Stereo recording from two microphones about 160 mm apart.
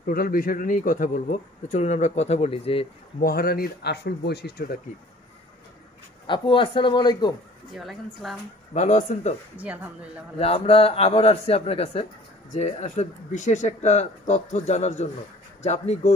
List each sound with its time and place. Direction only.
0.0 s speech: 60° left (ahead or behind); by 2.9 s 35° left (ahead or behind)
3.2 s speech: 70° left (ahead or behind)
6.2 s a man's voice: 30° left (ahead or behind)
7.7 s a woman's voice: centre (ahead or behind)
8.7 s speech: 45° left (ahead or behind)
9.6 s a woman's voice: 10° right (ahead or behind)
10.4 s a man's voice: 40° left (ahead or behind)